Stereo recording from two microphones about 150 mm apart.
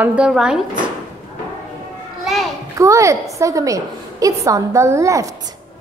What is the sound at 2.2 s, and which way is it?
Children playing, centre (ahead or behind).